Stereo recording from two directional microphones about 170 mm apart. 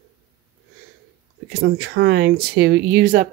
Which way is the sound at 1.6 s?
85° right.